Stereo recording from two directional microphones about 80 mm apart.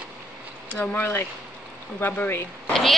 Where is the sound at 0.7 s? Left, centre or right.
Centre.